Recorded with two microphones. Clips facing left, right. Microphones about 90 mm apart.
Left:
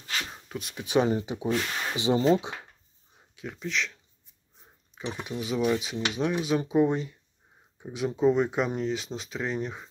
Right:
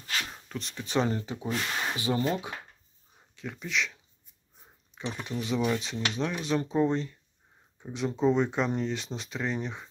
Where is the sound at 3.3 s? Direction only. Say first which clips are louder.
Left 1 dB; centre (ahead or behind).